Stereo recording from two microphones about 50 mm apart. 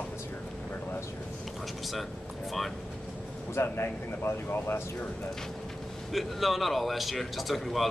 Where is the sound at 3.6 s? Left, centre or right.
Left.